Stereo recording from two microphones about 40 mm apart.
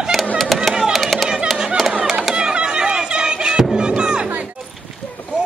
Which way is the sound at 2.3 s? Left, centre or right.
Right.